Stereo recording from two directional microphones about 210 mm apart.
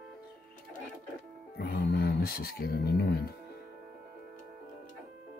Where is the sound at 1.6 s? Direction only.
45° left (ahead or behind).